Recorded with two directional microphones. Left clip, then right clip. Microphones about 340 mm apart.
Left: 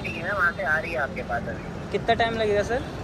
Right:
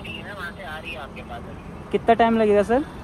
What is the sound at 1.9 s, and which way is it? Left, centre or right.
Speech, centre.